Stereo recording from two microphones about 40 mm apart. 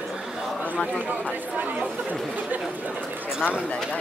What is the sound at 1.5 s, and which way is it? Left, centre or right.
Speech, right.